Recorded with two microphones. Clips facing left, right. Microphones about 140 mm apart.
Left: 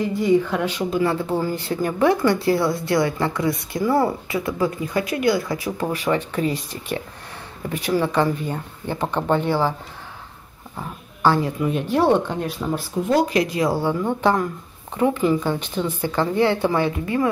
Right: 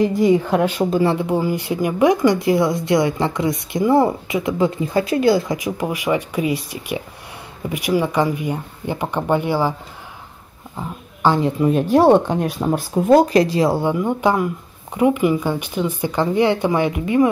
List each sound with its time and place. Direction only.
0.2 s speech: 45° right (ahead or behind)
1.1 s speech: 15° right (ahead or behind)
10.8 s speech: 20° right (ahead or behind)
11.6 s speech: 40° right (ahead or behind); by 13.9 s 25° right (ahead or behind)
13.9 s speech: 10° right (ahead or behind)